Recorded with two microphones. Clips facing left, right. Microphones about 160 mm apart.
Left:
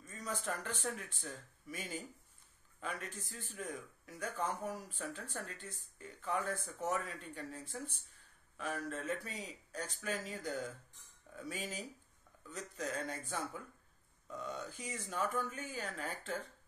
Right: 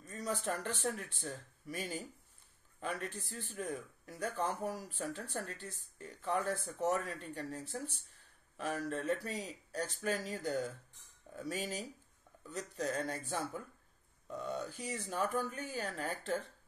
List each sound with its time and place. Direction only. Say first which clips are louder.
0.0 s speech: right 4 dB; 35° right (ahead or behind)